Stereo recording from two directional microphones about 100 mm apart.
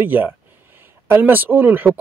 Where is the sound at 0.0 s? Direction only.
20° right (ahead or behind).